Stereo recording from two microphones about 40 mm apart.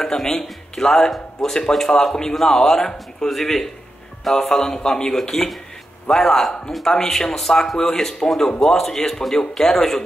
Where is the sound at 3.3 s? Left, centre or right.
Centre.